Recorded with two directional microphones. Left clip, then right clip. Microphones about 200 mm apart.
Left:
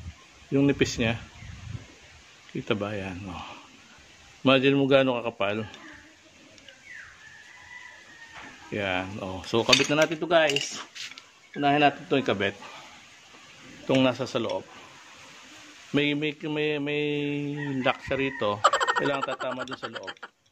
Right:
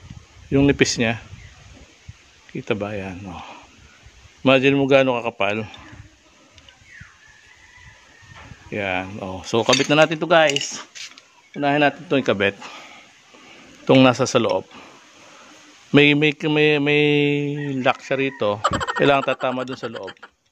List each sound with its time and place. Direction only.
0.5 s speech: 40° right (ahead or behind)
2.6 s speech: 20° right (ahead or behind)
8.6 s speech: 25° right (ahead or behind); by 10.5 s 55° right (ahead or behind)
10.6 s mantra: 50° right (ahead or behind)
11.6 s a man's voice: 55° right (ahead or behind)
13.8 s a man's voice: 60° right (ahead or behind)
15.9 s mantra: 60° right (ahead or behind); by 18.6 s 30° right (ahead or behind)
18.6 s fowl: centre (ahead or behind)
19.0 s a man's voice: 60° right (ahead or behind)
19.5 s speech: centre (ahead or behind)